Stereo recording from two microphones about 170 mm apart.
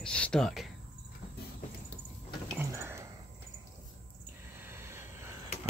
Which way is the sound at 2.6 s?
15° right (ahead or behind).